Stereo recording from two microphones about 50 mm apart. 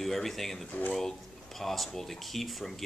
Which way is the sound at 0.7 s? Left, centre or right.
Left.